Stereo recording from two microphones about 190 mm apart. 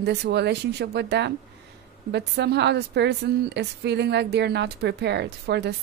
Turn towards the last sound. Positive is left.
turn(degrees=-60)  # may be behind; listen again after turning